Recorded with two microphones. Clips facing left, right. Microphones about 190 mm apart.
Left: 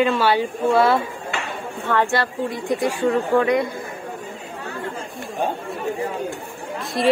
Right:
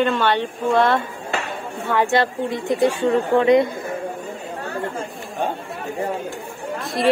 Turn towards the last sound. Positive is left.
turn(degrees=0)  # may be behind; listen again after turning